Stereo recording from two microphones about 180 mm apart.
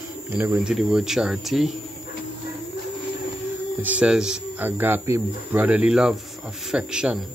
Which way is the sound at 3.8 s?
5° right (ahead or behind).